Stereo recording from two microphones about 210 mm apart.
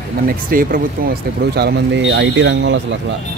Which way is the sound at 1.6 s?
55° right (ahead or behind).